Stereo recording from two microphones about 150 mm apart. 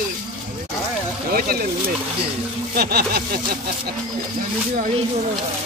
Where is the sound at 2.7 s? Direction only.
90° right.